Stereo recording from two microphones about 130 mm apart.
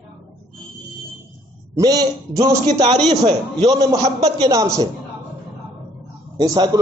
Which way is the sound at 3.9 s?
55° right (ahead or behind).